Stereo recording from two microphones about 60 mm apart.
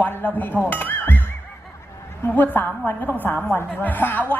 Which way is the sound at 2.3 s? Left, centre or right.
Left.